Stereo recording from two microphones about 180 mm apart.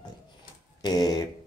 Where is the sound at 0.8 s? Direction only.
25° left (ahead or behind).